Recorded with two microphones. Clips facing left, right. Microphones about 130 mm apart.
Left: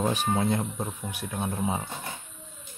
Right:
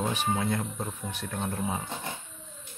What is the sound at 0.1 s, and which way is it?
Speech, 35° left (ahead or behind).